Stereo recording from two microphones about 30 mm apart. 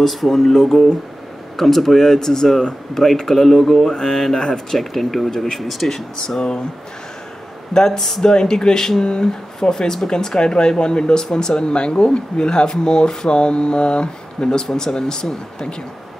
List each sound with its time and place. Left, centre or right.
0.0 s speech: centre
2.1 s speech: centre
7.7 s speech: centre